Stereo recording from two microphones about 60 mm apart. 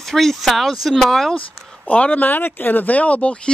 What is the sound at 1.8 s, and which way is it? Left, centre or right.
Speech, left.